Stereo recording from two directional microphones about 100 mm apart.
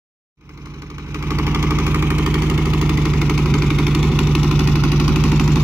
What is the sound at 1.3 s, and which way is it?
Vehicle, 20° right (ahead or behind).